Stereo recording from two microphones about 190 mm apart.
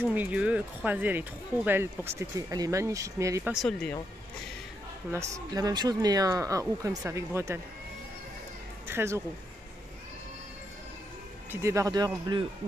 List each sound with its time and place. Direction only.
0.0 s speech: 10° right (ahead or behind)
3.5 s speech: 5° left (ahead or behind)
5.1 s speech: 15° right (ahead or behind)
8.8 s speech: 15° right (ahead or behind)
11.5 s speech: 15° right (ahead or behind)